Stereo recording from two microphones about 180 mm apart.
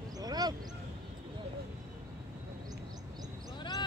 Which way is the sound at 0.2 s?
20° right (ahead or behind).